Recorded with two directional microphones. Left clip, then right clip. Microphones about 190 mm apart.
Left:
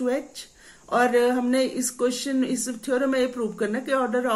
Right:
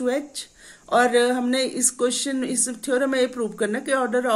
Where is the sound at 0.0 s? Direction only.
30° right (ahead or behind).